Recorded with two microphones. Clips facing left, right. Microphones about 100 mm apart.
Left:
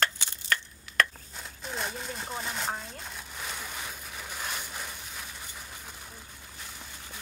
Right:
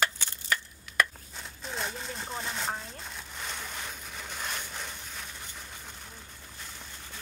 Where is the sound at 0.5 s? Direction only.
10° right (ahead or behind).